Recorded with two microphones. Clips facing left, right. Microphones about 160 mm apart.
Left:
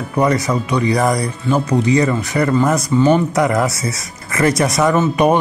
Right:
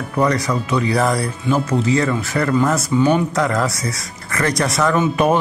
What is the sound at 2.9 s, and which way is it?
Speech, centre (ahead or behind).